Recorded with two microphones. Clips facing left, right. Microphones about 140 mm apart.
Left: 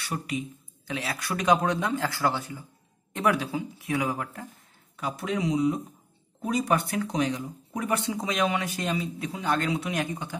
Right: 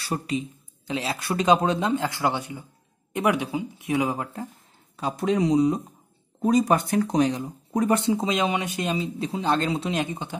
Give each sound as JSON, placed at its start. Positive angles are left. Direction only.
{"t": 0.0, "sound": "speech", "side_deg": -30}
{"t": 4.9, "sound": "speech", "side_deg": -35}
{"t": 8.0, "sound": "speech", "side_deg": -25}